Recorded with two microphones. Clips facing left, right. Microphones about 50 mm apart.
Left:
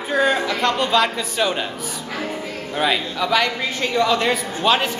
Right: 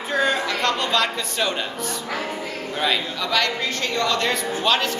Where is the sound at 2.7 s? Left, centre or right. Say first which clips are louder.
Left 3 dB; centre.